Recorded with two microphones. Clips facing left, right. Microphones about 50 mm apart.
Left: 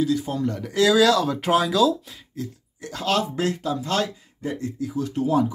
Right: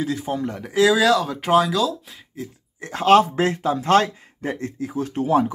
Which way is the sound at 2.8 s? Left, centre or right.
Right.